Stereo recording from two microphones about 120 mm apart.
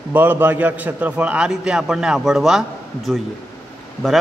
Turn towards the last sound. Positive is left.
turn(degrees=5)  # may be behind; listen again after turning